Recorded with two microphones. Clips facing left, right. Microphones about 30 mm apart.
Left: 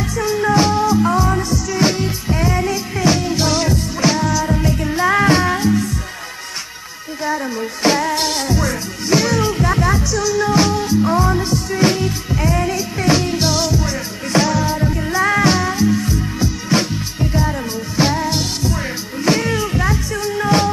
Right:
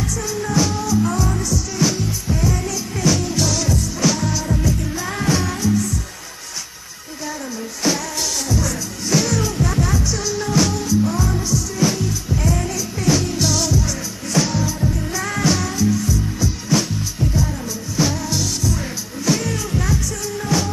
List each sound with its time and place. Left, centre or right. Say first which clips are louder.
0.0 s music: left 6 dB; left
7.8 s music: left 6 dB; left
10.1 s music: left 6 dB; centre
10.4 s music: left 2 dB; left
12.4 s music: left 5 dB; left